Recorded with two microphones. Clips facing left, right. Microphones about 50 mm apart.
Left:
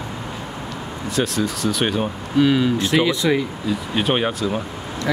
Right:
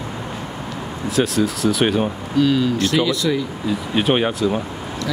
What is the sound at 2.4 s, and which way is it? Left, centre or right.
Speech, centre.